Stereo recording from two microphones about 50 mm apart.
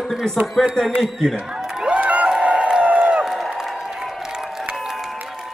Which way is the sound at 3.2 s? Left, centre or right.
Centre.